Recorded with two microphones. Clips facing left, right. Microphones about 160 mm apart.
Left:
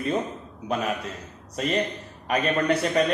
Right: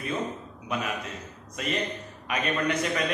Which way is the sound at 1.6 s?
35° left (ahead or behind).